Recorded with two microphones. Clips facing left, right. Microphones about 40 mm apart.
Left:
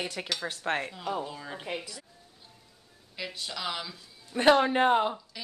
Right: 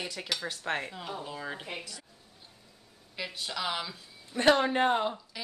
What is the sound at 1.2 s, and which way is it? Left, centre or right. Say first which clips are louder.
Speech: right 1 dB; centre.